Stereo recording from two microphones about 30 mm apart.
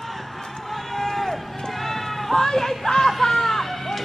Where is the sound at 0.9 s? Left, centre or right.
Centre.